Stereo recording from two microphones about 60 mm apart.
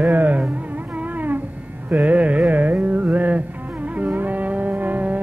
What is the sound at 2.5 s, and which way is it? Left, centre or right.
Music, right.